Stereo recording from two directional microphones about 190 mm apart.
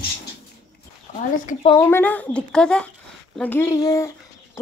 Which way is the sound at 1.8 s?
10° left (ahead or behind).